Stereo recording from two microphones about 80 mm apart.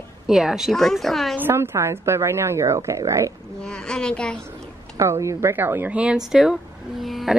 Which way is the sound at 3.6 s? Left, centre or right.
Centre.